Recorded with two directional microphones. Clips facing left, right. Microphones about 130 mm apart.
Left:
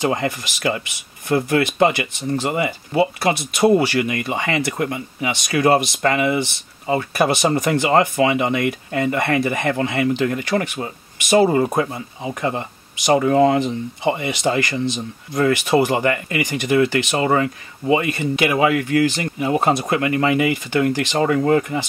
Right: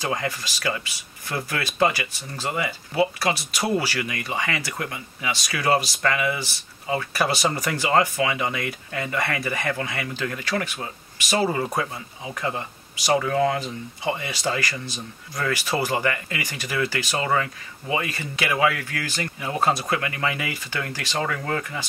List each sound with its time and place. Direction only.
0.0 s speech: 20° left (ahead or behind)